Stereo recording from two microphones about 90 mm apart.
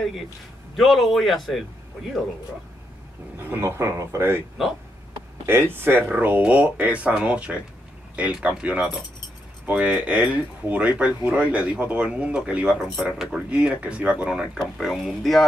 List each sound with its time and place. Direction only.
0.7 s speech: centre (ahead or behind)
3.4 s speech: 25° right (ahead or behind)
5.5 s speech: 25° right (ahead or behind); by 15.4 s centre (ahead or behind)